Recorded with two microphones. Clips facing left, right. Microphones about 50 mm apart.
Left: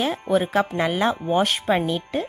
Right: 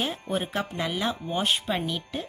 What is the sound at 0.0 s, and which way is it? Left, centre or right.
Speech, left.